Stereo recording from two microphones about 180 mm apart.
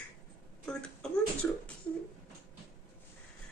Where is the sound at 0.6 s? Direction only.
5° left (ahead or behind).